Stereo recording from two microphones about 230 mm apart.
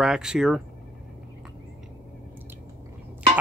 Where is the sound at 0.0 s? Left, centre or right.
Centre.